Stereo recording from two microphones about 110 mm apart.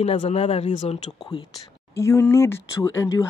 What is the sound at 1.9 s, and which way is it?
Speech, 25° left (ahead or behind).